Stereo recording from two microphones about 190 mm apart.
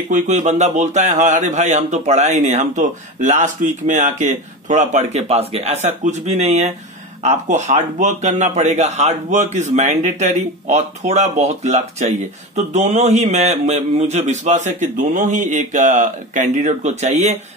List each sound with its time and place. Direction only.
0.1 s speech: 40° right (ahead or behind)